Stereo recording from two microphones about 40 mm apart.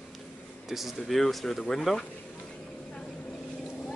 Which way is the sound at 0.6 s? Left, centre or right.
Centre.